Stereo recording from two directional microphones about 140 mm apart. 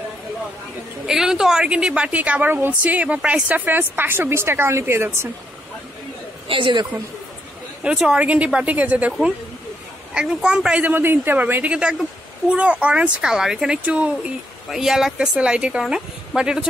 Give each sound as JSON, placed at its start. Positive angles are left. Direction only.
{"t": 1.0, "sound": "a woman's voice", "side_deg": -5}
{"t": 6.4, "sound": "a man's voice", "side_deg": -40}
{"t": 7.8, "sound": "a woman's voice", "side_deg": -5}